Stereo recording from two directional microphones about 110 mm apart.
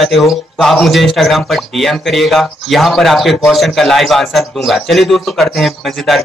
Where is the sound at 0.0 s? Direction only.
Centre (ahead or behind).